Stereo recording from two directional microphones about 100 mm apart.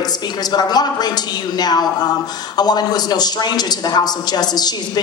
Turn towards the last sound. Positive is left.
turn(degrees=45)  # may be behind; listen again after turning